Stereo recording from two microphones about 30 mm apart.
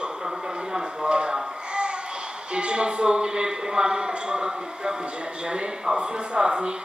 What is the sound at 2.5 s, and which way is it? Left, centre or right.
A man's voice, right.